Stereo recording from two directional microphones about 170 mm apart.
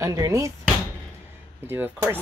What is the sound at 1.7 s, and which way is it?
Speech, 10° right (ahead or behind).